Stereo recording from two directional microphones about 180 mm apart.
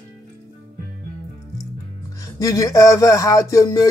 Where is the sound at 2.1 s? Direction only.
20° left (ahead or behind).